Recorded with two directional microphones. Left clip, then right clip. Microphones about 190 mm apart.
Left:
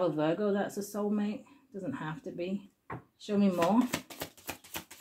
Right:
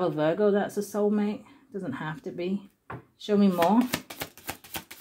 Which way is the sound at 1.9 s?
30° right (ahead or behind).